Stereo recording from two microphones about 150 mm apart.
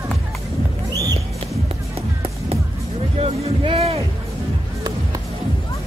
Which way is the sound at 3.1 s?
40° right (ahead or behind).